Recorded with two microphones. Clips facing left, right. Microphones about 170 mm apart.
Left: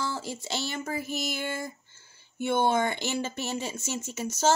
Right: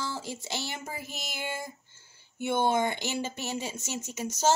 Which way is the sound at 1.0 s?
15° right (ahead or behind).